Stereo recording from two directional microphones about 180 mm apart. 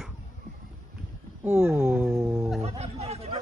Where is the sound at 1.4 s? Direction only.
5° right (ahead or behind).